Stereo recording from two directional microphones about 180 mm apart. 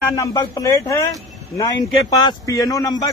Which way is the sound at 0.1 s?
20° left (ahead or behind).